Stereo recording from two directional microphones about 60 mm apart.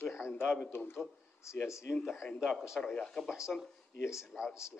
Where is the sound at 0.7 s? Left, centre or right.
Left.